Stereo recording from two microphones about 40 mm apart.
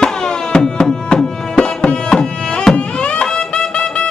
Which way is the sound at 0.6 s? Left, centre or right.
Centre.